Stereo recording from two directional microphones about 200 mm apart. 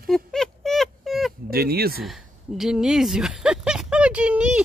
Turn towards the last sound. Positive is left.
turn(degrees=-5)  # may be behind; listen again after turning